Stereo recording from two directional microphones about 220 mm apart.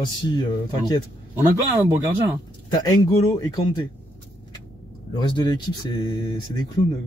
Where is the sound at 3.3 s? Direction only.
20° left (ahead or behind).